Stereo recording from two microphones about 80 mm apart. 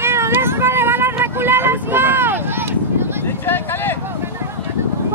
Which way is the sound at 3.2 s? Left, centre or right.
Left.